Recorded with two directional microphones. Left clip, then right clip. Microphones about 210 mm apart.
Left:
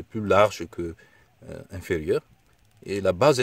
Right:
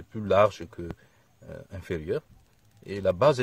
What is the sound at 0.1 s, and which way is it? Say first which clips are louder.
Speech: left 2 dB; 45° left (ahead or behind).